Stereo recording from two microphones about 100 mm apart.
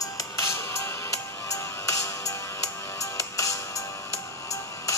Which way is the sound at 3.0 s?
35° left (ahead or behind).